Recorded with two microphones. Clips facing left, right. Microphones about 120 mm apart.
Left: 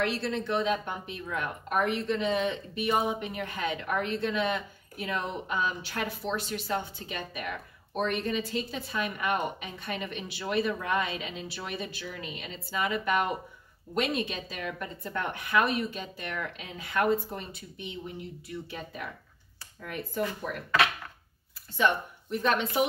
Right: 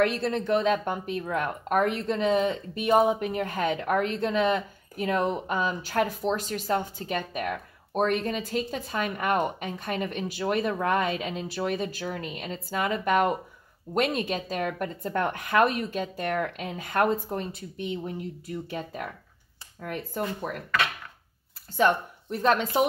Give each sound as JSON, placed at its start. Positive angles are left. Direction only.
{"t": 0.0, "sound": "a woman's voice", "side_deg": -50}
{"t": 21.7, "sound": "speech", "side_deg": -40}